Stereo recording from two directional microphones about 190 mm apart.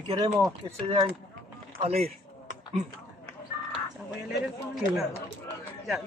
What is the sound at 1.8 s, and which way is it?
Speech, 30° right (ahead or behind).